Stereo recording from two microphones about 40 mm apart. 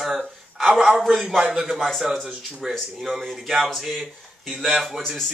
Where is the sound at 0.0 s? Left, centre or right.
Centre.